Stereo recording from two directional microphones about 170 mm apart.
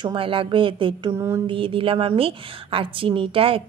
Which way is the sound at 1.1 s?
15° right (ahead or behind).